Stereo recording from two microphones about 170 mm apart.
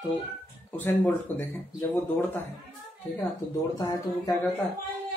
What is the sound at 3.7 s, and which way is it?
Speech, 20° left (ahead or behind).